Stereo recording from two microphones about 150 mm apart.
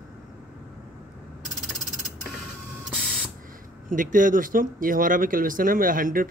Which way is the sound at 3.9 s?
60° right (ahead or behind).